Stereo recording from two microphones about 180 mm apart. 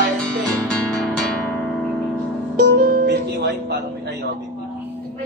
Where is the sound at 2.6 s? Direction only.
50° right (ahead or behind); by 3.8 s 65° right (ahead or behind).